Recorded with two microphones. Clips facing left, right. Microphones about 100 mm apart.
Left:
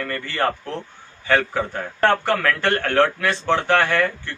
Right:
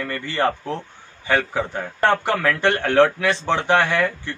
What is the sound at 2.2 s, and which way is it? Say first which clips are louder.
A man's voice: right 1 dB; 15° right (ahead or behind).